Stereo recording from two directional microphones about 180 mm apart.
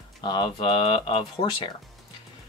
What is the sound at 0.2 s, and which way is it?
Speech, 25° left (ahead or behind).